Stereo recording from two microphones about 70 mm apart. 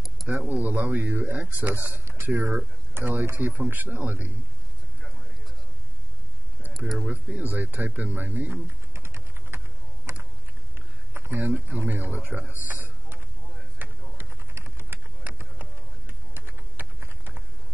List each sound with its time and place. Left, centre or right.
0.3 s a man's voice: right
7.1 s a man's voice: right
8.6 s typing: right
11.1 s speech: right
13.8 s a sound: right
14.1 s typing: right